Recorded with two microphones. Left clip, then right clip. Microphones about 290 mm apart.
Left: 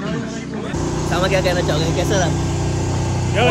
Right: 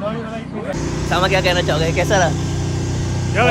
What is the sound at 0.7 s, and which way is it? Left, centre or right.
Speech, centre.